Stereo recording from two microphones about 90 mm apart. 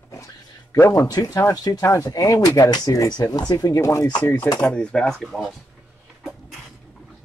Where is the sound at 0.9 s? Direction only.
45° left (ahead or behind); by 4.5 s 25° left (ahead or behind).